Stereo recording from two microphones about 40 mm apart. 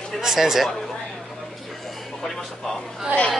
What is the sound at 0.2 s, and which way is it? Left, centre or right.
Speech, centre.